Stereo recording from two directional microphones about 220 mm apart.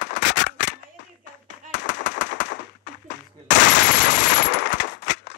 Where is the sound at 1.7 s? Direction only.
55° left (ahead or behind).